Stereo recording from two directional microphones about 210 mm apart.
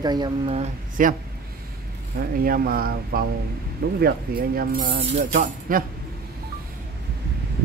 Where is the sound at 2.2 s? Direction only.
45° right (ahead or behind).